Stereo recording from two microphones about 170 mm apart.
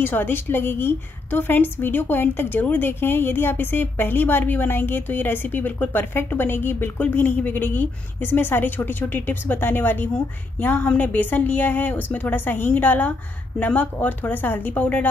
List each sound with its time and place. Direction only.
0.0 s a woman's voice: 10° left (ahead or behind)